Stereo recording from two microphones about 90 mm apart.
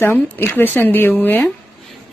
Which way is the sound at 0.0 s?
25° left (ahead or behind).